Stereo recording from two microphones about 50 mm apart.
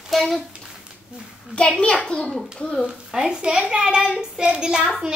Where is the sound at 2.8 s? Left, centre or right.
Centre.